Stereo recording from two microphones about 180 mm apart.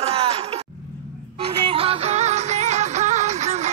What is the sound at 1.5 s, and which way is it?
Music, 30° right (ahead or behind).